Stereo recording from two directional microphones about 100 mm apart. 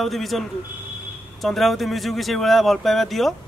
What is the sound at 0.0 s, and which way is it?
Speech, centre (ahead or behind).